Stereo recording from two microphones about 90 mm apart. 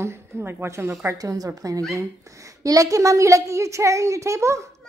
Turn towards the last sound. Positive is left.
turn(degrees=-35)  # may be behind; listen again after turning